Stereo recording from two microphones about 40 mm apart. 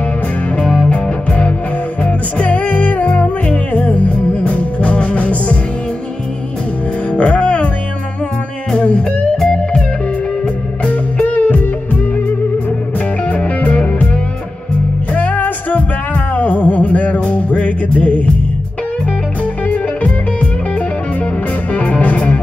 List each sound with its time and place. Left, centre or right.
0.8 s music: left
7.1 s music: left
8.7 s music: left
9.4 s music: centre
10.9 s music: left
13.3 s music: left
15.1 s music: left
17.3 s music: left
19.7 s music: left
21.7 s music: left